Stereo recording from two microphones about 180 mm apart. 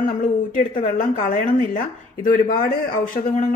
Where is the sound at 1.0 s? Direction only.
50° left (ahead or behind).